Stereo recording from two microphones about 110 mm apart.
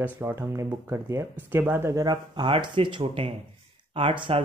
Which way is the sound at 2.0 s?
40° right (ahead or behind).